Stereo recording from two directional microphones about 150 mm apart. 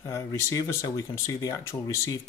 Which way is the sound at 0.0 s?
20° left (ahead or behind).